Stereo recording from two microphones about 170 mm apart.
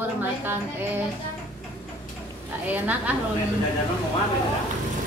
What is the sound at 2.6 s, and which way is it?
Speech, 10° right (ahead or behind).